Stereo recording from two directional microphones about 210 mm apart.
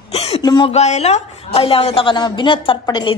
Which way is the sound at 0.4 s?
20° left (ahead or behind).